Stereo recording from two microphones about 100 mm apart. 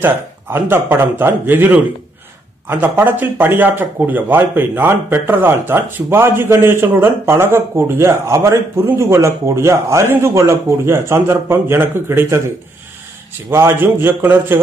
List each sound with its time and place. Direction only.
0.0 s speech: 20° right (ahead or behind)
13.5 s speech: 25° right (ahead or behind)